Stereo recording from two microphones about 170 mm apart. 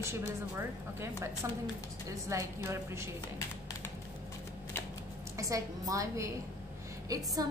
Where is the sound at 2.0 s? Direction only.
15° right (ahead or behind).